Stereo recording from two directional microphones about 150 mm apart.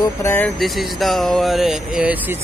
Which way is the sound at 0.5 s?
Centre (ahead or behind).